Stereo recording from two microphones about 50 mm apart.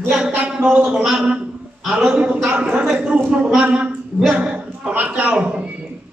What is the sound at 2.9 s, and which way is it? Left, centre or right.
Speech, centre.